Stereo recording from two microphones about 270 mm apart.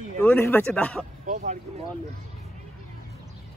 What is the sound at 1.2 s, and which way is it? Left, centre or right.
Speech, right.